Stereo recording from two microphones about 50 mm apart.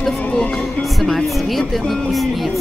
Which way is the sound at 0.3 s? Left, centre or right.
Centre.